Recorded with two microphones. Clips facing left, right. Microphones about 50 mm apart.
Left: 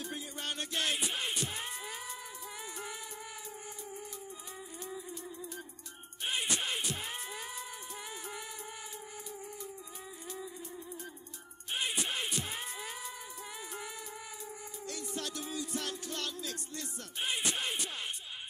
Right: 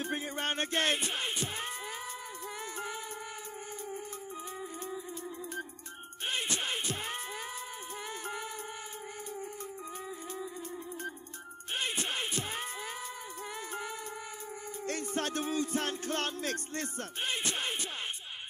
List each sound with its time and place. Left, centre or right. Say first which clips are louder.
0.0 s music: right 6 dB; right
6.5 s music: right 1 dB; right
12.0 s music: right 1 dB; right
14.9 s music: right 6 dB; right